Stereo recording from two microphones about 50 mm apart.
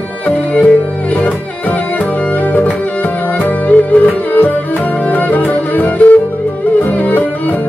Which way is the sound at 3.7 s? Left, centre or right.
Left.